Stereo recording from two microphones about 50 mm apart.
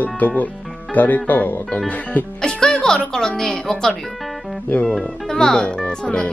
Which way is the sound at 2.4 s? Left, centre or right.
Centre.